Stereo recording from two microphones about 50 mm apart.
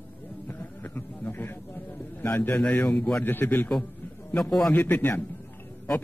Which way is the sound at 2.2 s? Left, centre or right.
Left.